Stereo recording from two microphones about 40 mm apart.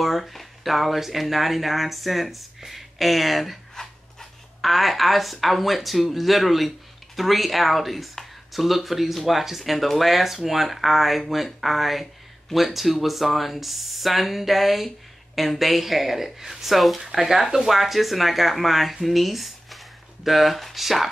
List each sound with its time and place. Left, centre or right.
0.0 s speech: centre